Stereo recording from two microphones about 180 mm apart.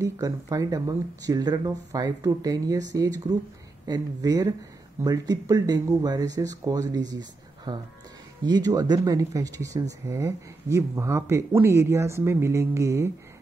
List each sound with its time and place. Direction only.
0.0 s speech: 20° right (ahead or behind)